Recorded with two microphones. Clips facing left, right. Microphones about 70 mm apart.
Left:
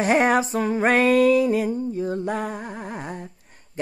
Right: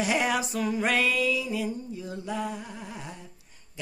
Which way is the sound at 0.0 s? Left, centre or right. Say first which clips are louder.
Left 7 dB; left.